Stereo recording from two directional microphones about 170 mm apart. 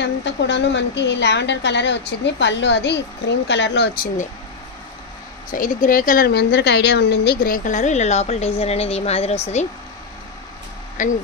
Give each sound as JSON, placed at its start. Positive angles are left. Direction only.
{"t": 0.0, "sound": "a woman's voice", "side_deg": 90}
{"t": 5.5, "sound": "a woman's voice", "side_deg": 50}
{"t": 11.0, "sound": "a woman's voice", "side_deg": 50}